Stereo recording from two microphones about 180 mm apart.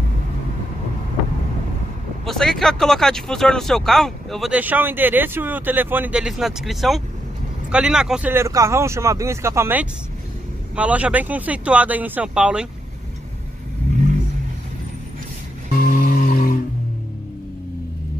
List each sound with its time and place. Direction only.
2.2 s speech: centre (ahead or behind)
15.7 s music: 50° left (ahead or behind)